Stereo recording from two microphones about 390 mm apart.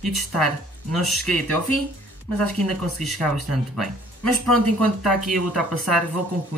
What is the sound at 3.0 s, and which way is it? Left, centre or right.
Speech, centre.